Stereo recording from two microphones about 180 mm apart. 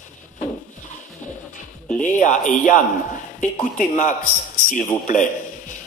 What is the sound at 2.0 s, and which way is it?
Speech, 45° left (ahead or behind).